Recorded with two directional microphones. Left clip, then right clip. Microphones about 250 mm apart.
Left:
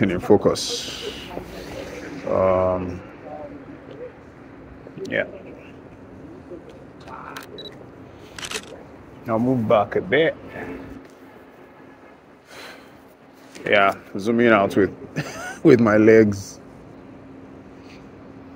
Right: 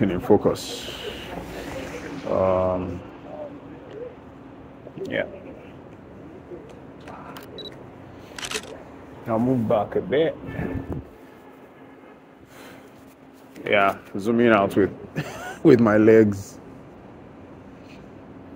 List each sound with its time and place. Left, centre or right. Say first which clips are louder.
0.0 s speech: left 2 dB; centre
1.4 s a sound: right 1 dB; right
2.4 s speech: left 3 dB; centre
5.0 s speech: left 2 dB; centre
8.4 s a sound: even; centre
9.3 s speech: left 3 dB; centre
13.7 s speech: left 2 dB; centre